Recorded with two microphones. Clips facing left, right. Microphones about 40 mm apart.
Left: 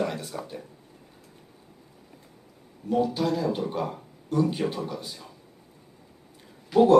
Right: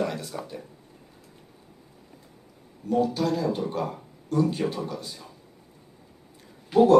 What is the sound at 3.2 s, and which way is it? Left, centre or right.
Speech, centre.